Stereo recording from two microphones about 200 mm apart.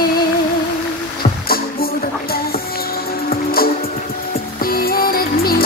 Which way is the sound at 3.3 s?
50° left (ahead or behind).